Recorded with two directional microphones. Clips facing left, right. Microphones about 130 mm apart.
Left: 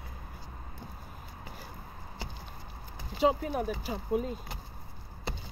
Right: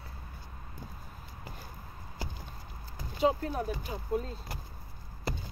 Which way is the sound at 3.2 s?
5° left (ahead or behind).